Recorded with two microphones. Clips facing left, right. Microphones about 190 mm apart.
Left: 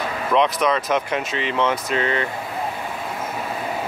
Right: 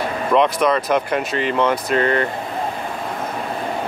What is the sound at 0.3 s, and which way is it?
Speech, centre (ahead or behind).